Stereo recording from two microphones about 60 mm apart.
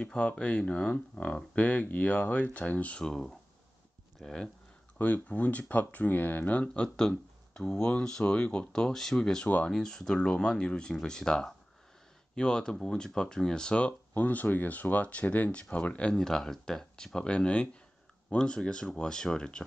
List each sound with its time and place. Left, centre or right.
0.0 s speech: centre
3.1 s speech: centre
4.9 s speech: left
14.1 s speech: left
16.2 s speech: centre